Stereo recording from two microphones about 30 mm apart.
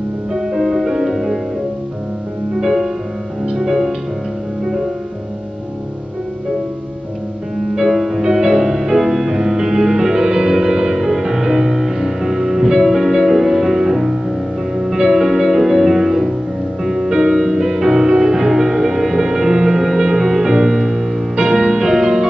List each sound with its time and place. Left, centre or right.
0.3 s music: centre
2.5 s music: centre
7.7 s music: centre
21.5 s music: centre